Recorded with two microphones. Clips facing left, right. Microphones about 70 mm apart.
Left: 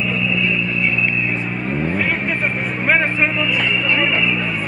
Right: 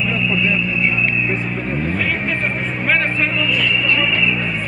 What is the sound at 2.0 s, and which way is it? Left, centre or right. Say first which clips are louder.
Vehicle: left 1 dB; centre.